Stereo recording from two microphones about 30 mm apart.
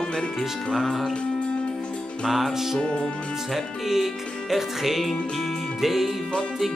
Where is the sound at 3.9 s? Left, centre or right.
Centre.